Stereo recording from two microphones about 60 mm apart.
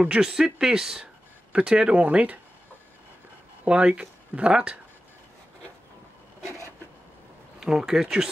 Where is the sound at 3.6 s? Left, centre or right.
Centre.